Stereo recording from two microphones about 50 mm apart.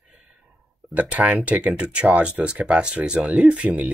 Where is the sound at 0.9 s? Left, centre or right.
Right.